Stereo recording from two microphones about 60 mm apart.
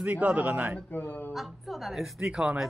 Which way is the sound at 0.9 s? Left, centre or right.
Left.